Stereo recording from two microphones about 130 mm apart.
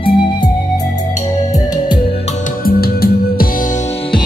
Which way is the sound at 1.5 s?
30° left (ahead or behind).